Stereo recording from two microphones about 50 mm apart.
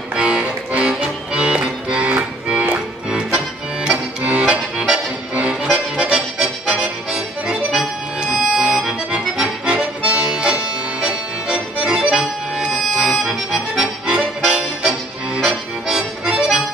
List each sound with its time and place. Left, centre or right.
0.1 s music: right
3.2 s accordion: centre